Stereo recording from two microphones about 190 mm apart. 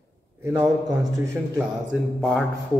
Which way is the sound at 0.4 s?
15° right (ahead or behind).